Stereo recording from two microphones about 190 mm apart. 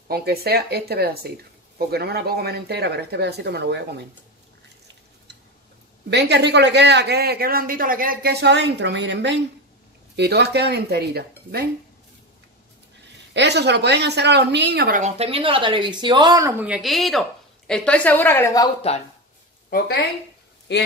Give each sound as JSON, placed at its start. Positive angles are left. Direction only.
{"t": 0.1, "sound": "speech", "side_deg": -55}
{"t": 6.0, "sound": "speech", "side_deg": -65}
{"t": 13.3, "sound": "speech", "side_deg": -65}
{"t": 15.0, "sound": "a woman's voice", "side_deg": -35}
{"t": 19.7, "sound": "speech", "side_deg": 50}